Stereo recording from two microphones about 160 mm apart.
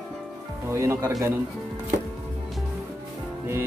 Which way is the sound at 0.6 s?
15° right (ahead or behind).